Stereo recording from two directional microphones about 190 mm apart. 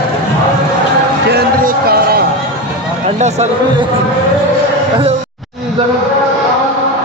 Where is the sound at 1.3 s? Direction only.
55° right (ahead or behind).